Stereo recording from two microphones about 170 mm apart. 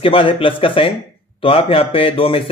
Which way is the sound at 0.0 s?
30° left (ahead or behind).